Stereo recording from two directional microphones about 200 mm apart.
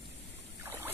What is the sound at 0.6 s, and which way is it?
Trickle, 15° right (ahead or behind).